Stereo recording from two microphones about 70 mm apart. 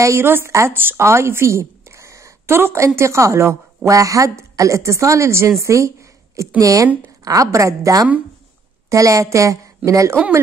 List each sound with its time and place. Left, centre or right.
0.0 s a woman's voice: right
5.6 s a sound: right
6.6 s a woman's voice: right